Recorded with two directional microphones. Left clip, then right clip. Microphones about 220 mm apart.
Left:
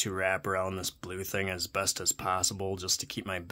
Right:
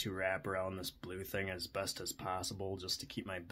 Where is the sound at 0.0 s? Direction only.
30° left (ahead or behind).